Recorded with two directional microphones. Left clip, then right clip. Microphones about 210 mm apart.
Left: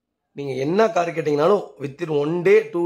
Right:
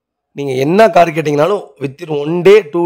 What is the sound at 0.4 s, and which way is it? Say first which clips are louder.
A man's voice: right 10 dB; 45° right (ahead or behind).